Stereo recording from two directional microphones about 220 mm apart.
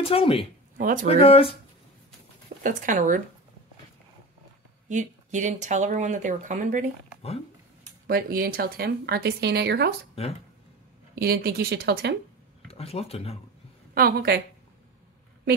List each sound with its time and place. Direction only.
0.0 s speech: 25° left (ahead or behind)
0.7 s speech: 40° right (ahead or behind)
1.0 s speech: 25° left (ahead or behind)
2.6 s speech: 35° right (ahead or behind)
4.8 s speech: 35° right (ahead or behind)
8.1 s speech: 45° right (ahead or behind)
10.2 s speech: 25° left (ahead or behind)
11.1 s speech: 45° right (ahead or behind)
12.7 s speech: 30° left (ahead or behind)
13.9 s speech: 45° right (ahead or behind)